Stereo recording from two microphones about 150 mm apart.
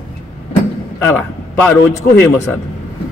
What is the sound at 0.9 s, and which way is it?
Speech, 15° left (ahead or behind).